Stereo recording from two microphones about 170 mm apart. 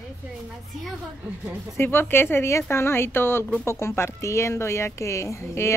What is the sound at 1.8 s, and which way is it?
Speech, 15° left (ahead or behind).